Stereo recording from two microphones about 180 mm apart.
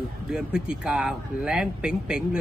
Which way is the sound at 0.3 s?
5° right (ahead or behind).